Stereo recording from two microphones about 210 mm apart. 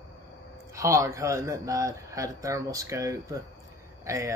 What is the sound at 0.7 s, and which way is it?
A man's voice, 15° right (ahead or behind).